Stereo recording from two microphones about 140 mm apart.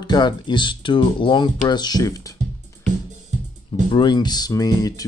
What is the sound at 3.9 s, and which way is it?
Speech, 30° left (ahead or behind).